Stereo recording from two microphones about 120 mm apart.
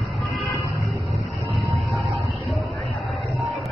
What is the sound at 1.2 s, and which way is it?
Vehicle, 25° right (ahead or behind).